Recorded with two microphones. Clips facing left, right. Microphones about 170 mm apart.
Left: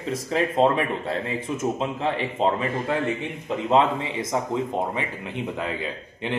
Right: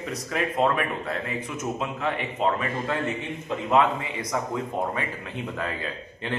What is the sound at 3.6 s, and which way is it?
A man's voice, 25° left (ahead or behind).